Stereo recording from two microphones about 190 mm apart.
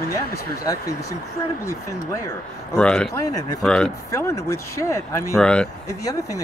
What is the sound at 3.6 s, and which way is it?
Speech, 5° left (ahead or behind).